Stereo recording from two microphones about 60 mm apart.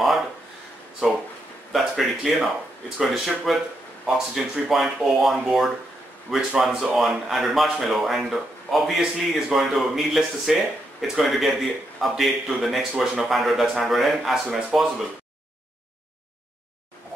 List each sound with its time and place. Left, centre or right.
1.7 s speech: centre